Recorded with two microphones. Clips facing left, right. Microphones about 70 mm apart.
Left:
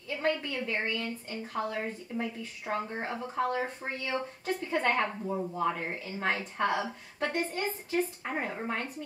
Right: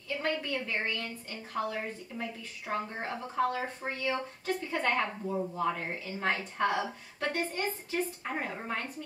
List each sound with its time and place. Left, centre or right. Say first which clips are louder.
0.2 s a woman's voice: left 3 dB; centre
3.2 s a woman's voice: even; centre
4.5 s a woman's voice: left 2 dB; left
7.2 s a woman's voice: left 1 dB; centre